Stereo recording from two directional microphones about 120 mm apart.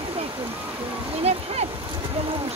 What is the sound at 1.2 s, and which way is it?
Speech, 60° right (ahead or behind).